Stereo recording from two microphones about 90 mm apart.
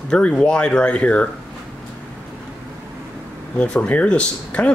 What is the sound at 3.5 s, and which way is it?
A man's voice, 10° left (ahead or behind).